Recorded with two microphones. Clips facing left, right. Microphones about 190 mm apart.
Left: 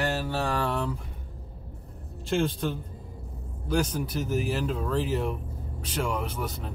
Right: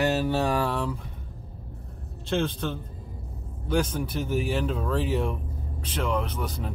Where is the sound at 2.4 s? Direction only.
5° left (ahead or behind).